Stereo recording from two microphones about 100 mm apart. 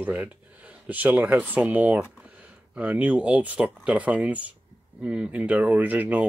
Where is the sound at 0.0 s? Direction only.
15° right (ahead or behind).